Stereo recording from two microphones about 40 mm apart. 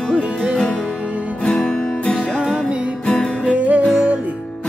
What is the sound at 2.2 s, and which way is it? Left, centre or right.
Music, right.